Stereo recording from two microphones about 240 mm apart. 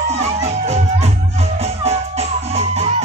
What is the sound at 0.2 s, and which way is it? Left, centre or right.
Music, right.